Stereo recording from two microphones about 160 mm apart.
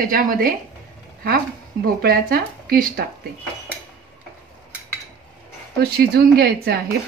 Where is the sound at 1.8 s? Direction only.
70° right (ahead or behind).